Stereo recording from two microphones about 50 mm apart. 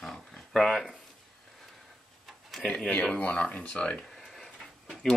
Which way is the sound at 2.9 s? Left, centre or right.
Left.